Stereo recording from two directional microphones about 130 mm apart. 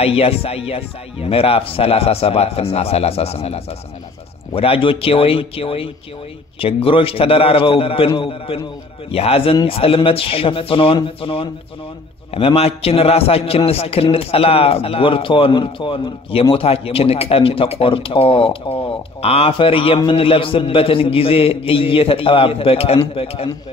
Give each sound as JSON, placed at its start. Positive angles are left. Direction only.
{"t": 0.0, "sound": "speech", "side_deg": 50}